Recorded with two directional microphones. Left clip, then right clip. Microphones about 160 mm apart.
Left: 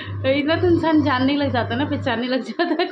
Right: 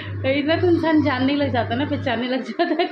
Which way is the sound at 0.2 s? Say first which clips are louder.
Left 1 dB; centre (ahead or behind).